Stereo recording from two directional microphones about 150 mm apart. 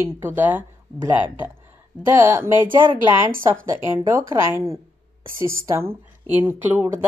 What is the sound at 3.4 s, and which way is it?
A woman's voice, 15° right (ahead or behind).